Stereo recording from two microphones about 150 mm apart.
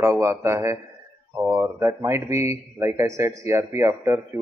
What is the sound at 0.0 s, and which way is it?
Speech, 15° right (ahead or behind).